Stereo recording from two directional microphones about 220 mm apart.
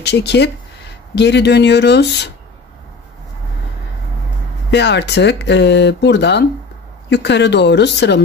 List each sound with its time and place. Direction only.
0.0 s speech: 50° left (ahead or behind)
4.6 s speech: 50° left (ahead or behind)